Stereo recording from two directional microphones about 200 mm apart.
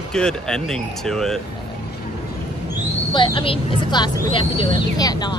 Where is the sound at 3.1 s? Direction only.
25° left (ahead or behind).